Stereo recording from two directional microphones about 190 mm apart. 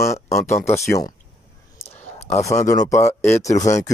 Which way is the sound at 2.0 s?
35° left (ahead or behind).